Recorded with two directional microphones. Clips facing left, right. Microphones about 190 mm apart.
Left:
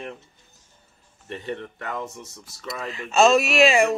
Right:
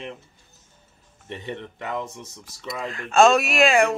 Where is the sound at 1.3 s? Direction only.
20° right (ahead or behind).